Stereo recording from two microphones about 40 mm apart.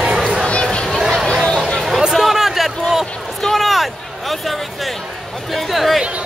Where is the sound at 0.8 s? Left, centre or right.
Centre.